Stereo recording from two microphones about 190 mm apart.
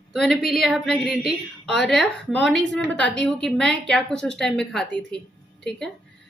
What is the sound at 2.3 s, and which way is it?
Speech, 70° left (ahead or behind).